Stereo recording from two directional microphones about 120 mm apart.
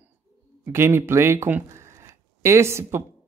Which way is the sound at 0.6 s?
20° right (ahead or behind).